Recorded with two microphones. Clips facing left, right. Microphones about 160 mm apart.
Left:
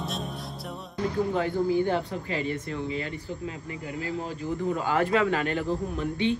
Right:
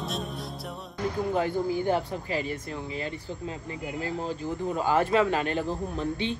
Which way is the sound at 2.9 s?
30° right (ahead or behind).